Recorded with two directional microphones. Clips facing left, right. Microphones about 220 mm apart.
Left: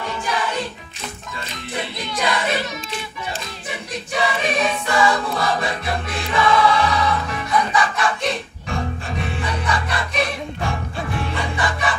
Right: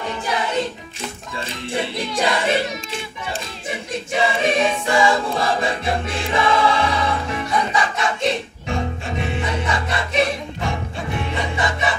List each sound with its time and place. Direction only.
1.5 s music: 30° right (ahead or behind)
3.9 s choir: 25° right (ahead or behind)